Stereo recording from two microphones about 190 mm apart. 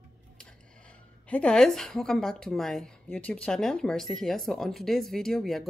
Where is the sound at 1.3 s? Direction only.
5° left (ahead or behind).